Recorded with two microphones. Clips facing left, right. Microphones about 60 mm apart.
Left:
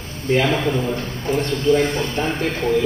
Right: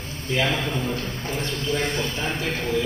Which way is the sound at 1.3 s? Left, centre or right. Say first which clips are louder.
Left 10 dB; left.